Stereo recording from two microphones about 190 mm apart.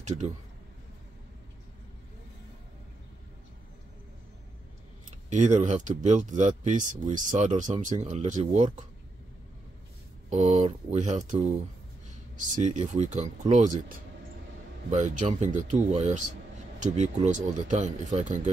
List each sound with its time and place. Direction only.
0.0 s a man's voice: 40° right (ahead or behind)
5.3 s speech: 40° right (ahead or behind)
10.3 s speech: 35° right (ahead or behind)
12.4 s speech: 40° right (ahead or behind)